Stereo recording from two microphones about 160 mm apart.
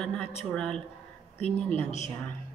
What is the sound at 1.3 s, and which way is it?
Speech, 40° left (ahead or behind).